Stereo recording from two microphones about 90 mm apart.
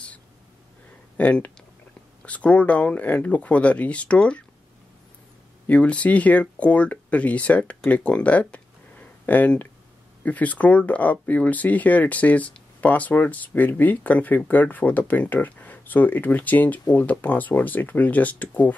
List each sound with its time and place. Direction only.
1.1 s speech: 15° left (ahead or behind)
5.7 s speech: 15° left (ahead or behind)